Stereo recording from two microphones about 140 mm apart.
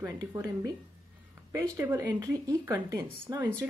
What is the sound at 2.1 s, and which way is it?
Speech, 25° right (ahead or behind).